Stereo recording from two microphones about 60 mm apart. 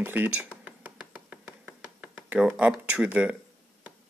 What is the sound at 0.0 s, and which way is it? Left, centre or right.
Speech, right.